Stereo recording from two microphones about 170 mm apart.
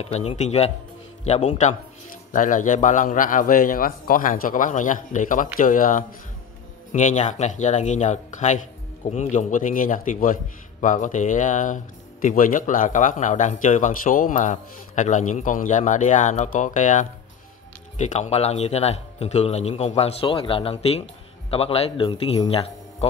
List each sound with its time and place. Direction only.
0.0 s a man's voice: 35° left (ahead or behind)